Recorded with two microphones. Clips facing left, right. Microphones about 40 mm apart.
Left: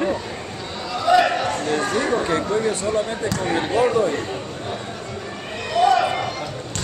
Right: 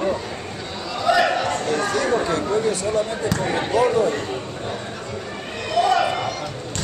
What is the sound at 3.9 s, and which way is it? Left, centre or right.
Speech, centre.